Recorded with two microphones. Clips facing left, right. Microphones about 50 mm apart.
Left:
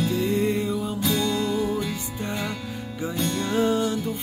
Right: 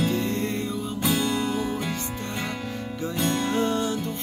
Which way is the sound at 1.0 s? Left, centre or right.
Right.